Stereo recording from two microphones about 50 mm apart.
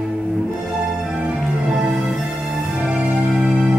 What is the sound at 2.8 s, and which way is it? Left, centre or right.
Music, centre.